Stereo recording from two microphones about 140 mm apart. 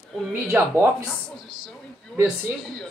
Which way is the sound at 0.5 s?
10° right (ahead or behind).